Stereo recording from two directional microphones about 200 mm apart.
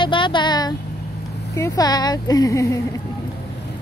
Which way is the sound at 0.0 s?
25° left (ahead or behind).